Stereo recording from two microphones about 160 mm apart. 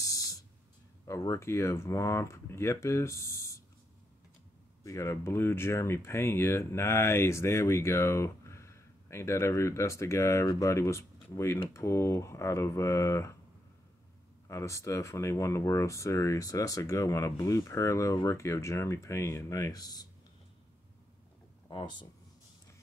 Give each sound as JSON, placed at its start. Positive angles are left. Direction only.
{"t": 0.0, "sound": "a sound", "side_deg": 20}
{"t": 1.0, "sound": "speech", "side_deg": 20}
{"t": 4.8, "sound": "speech", "side_deg": 20}
{"t": 14.5, "sound": "speech", "side_deg": 15}
{"t": 21.6, "sound": "speech", "side_deg": 30}